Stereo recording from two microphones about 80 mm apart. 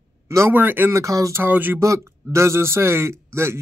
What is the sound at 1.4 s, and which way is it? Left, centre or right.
Speech, right.